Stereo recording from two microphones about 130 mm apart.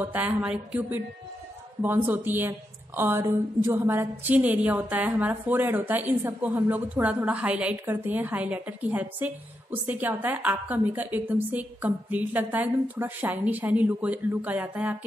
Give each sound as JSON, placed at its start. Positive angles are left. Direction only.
{"t": 0.0, "sound": "a woman's voice", "side_deg": -15}